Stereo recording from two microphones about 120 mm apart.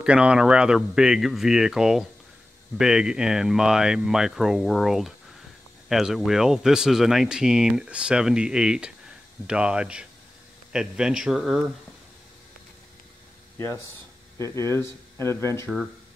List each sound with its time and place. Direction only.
0.0 s speech: 10° right (ahead or behind)
14.4 s speech: 25° left (ahead or behind)